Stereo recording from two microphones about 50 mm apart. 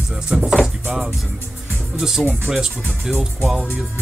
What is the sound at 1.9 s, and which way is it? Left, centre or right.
Speech, centre.